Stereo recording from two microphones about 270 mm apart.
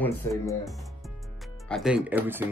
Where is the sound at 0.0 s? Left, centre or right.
Centre.